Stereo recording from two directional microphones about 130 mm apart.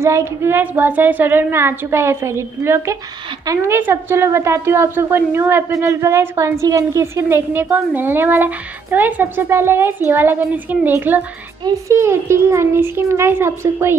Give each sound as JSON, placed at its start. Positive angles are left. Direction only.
{"t": 0.0, "sound": "a woman's voice", "side_deg": -20}